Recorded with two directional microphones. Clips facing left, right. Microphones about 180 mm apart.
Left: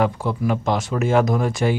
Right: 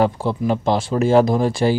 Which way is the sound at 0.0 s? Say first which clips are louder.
Right 2 dB; 30° right (ahead or behind).